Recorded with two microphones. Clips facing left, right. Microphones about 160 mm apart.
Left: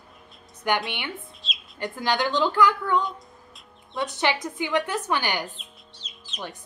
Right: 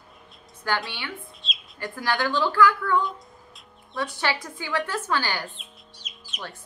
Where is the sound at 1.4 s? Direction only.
Centre (ahead or behind).